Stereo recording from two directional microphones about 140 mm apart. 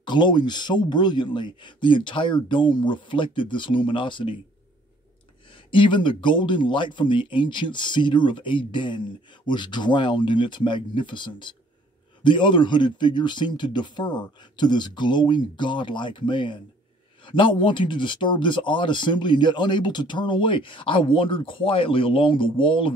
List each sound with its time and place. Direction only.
0.0 s speech: 35° left (ahead or behind)
5.7 s speech: 35° left (ahead or behind)